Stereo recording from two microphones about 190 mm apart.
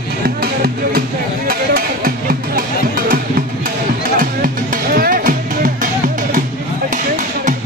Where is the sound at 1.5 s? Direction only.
50° right (ahead or behind).